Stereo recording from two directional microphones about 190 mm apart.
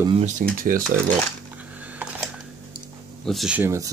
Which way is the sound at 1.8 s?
10° right (ahead or behind).